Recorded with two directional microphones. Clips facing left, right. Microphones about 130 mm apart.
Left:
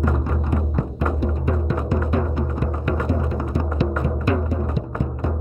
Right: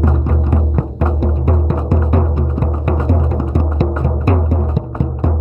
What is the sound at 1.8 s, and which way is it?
Music, 50° right (ahead or behind).